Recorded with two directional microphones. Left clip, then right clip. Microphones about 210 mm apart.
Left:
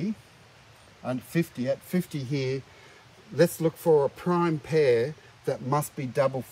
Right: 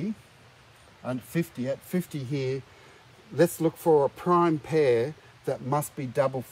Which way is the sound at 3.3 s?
20° right (ahead or behind).